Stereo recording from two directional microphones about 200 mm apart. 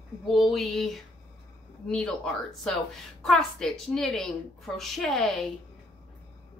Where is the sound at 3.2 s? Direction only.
Centre (ahead or behind).